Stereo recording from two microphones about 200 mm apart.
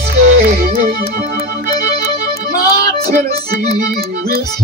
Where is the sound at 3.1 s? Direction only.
50° right (ahead or behind).